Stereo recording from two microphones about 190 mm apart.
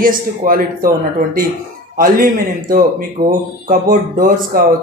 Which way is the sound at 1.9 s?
50° right (ahead or behind).